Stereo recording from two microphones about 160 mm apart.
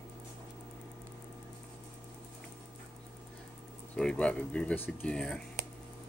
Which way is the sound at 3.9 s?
5° left (ahead or behind).